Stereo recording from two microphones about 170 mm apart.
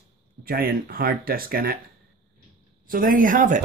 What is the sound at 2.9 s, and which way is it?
Speech, 55° right (ahead or behind).